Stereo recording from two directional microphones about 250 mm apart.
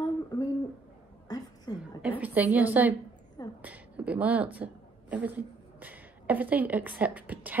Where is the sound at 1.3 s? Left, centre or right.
Centre.